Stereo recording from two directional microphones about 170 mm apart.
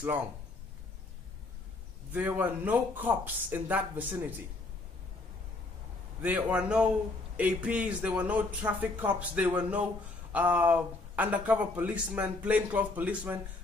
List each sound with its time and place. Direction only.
2.1 s speech: 10° right (ahead or behind)
6.2 s speech: 10° right (ahead or behind)